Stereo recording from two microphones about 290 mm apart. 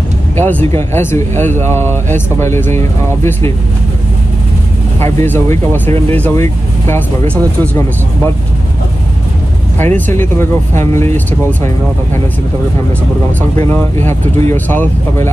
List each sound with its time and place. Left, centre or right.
0.4 s speech: centre
5.0 s speech: centre
9.9 s speech: centre
13.4 s speech: centre